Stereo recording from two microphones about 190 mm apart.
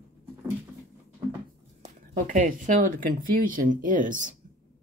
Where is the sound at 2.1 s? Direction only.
40° right (ahead or behind).